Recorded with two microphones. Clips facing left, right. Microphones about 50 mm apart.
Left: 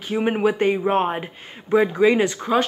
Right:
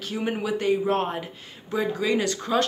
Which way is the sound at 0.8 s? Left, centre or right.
Left.